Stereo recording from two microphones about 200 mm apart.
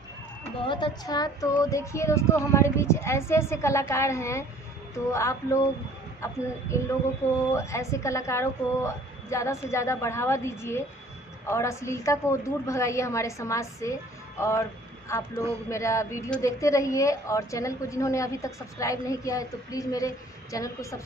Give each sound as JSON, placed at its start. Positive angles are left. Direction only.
{"t": 0.7, "sound": "a woman's voice", "side_deg": 25}